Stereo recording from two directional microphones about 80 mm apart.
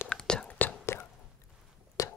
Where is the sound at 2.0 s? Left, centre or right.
Left.